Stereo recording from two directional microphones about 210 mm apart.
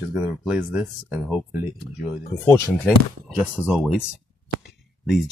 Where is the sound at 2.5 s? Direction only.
5° left (ahead or behind).